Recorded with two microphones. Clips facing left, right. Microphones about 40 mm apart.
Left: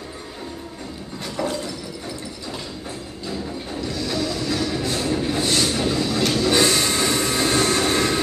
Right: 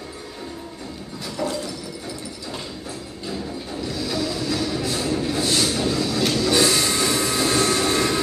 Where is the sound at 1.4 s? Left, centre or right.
Centre.